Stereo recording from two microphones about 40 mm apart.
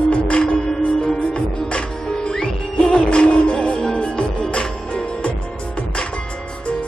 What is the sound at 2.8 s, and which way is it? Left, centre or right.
Music, left.